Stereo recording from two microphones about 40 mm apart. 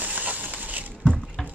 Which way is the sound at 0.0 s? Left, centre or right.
Right.